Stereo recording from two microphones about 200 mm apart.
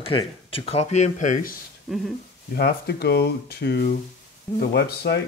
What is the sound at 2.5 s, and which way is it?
Speech, 50° left (ahead or behind).